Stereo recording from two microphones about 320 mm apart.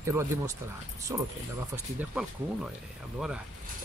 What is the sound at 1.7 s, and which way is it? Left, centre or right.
Speech, centre.